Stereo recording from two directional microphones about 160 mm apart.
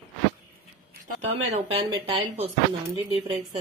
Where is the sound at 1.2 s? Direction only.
40° right (ahead or behind).